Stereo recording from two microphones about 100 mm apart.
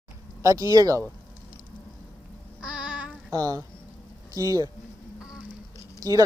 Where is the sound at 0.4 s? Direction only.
35° right (ahead or behind).